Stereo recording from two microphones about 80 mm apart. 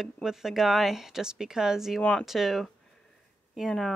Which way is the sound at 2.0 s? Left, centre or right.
Centre.